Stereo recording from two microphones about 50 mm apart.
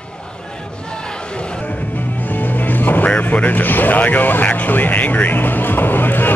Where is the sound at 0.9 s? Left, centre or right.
Centre.